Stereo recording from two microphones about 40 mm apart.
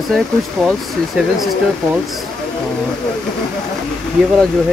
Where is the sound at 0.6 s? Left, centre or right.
Centre.